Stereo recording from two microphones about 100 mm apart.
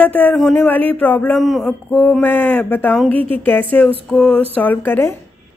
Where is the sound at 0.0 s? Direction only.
15° left (ahead or behind).